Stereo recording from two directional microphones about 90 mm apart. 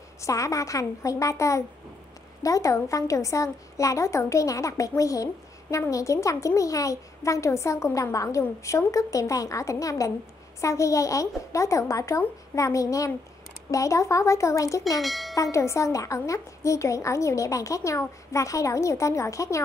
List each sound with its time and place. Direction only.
0.2 s a woman's voice: 35° left (ahead or behind)
15.0 s bell: centre (ahead or behind)
15.3 s a woman's voice: 35° left (ahead or behind)